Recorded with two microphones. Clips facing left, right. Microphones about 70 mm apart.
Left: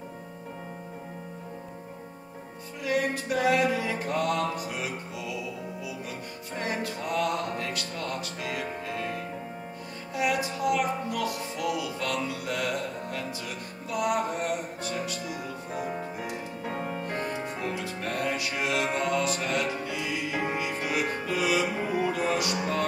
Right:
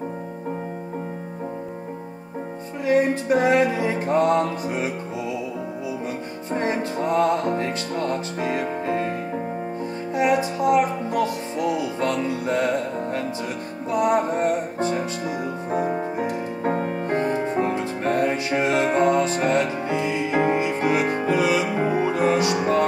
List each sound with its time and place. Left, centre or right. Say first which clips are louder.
2.8 s music: right 8 dB; right